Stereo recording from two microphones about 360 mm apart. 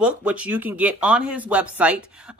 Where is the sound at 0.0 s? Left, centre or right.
Centre.